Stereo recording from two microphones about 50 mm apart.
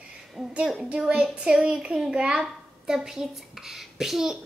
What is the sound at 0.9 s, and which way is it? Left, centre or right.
A woman's voice, centre.